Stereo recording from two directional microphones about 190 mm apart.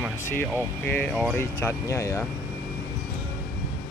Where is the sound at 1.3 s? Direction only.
15° left (ahead or behind).